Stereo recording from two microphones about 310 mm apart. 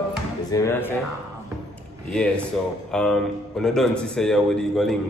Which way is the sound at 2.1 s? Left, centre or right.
Centre.